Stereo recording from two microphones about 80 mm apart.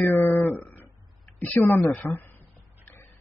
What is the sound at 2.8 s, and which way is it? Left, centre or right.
Pig, left.